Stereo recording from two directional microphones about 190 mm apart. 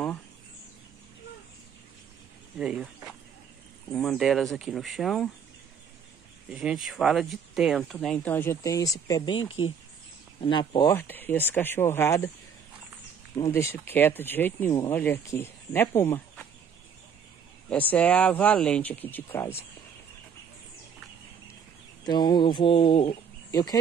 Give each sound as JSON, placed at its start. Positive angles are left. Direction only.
{"t": 2.6, "sound": "speech", "side_deg": -5}
{"t": 3.9, "sound": "speech", "side_deg": 0}
{"t": 6.5, "sound": "speech", "side_deg": -5}
{"t": 9.3, "sound": "speech", "side_deg": 90}
{"t": 10.4, "sound": "chicken", "side_deg": 25}
{"t": 11.0, "sound": "speech", "side_deg": 10}
{"t": 13.4, "sound": "speech", "side_deg": 15}
{"t": 17.6, "sound": "speech", "side_deg": 10}
{"t": 22.0, "sound": "chicken", "side_deg": 20}